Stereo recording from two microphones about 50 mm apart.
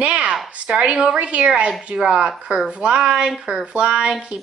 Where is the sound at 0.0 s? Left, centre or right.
Right.